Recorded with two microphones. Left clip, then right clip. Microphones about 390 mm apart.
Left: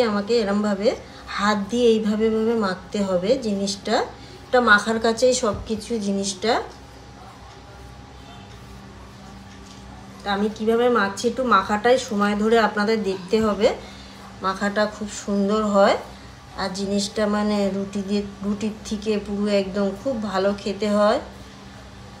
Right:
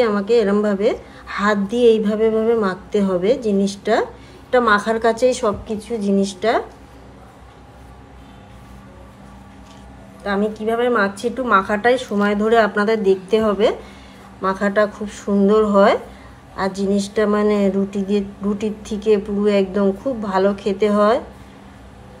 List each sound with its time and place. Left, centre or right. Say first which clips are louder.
0.0 s speech: right 5 dB; centre
10.2 s speech: right 2 dB; centre